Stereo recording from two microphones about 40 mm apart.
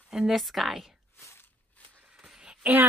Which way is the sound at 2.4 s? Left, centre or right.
Right.